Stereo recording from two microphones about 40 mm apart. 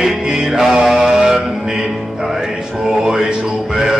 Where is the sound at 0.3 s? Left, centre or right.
Centre.